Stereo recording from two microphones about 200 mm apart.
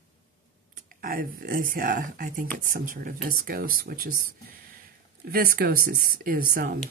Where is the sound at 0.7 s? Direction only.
45° right (ahead or behind).